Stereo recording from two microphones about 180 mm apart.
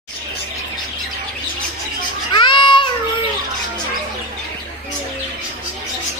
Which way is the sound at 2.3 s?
25° left (ahead or behind).